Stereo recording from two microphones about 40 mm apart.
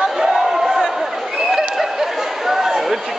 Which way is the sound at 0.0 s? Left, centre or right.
Centre.